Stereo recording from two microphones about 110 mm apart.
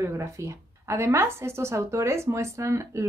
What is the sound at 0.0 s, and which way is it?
A woman's voice, 25° right (ahead or behind).